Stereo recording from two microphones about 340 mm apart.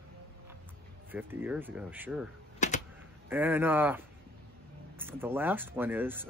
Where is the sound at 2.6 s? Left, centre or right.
Left.